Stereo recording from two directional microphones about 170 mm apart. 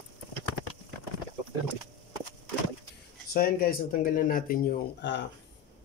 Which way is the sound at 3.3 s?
60° left (ahead or behind).